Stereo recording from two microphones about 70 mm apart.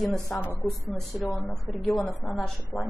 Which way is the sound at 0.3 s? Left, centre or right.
Centre.